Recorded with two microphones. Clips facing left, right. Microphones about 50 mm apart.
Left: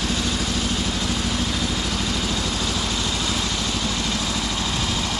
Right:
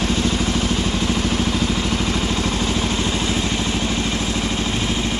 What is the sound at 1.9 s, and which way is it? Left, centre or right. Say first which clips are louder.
Vehicle: right 4 dB; right.